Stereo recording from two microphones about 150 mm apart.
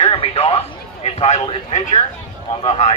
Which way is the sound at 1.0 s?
45° left (ahead or behind).